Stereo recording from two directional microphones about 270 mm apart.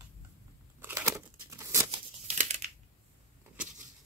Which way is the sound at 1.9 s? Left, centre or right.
Right.